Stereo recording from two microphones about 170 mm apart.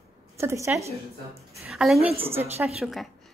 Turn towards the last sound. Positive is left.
turn(degrees=0)  # may be behind; listen again after turning